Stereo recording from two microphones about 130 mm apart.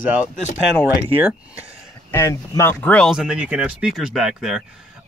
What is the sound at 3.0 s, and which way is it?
Speech, 5° right (ahead or behind).